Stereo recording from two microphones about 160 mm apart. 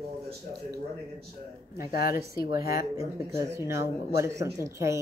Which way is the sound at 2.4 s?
70° left (ahead or behind).